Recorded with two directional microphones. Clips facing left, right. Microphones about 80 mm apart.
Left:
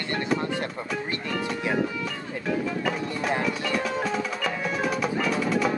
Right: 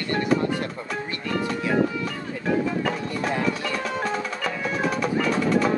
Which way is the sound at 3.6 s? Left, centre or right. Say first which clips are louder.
Even; centre.